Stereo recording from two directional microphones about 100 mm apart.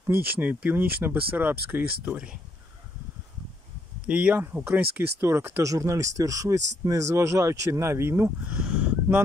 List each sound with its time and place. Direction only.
0.3 s speech: 15° right (ahead or behind)
4.1 s speech: 10° right (ahead or behind)
4.4 s speech: 20° right (ahead or behind)
8.5 s a sound: 10° right (ahead or behind)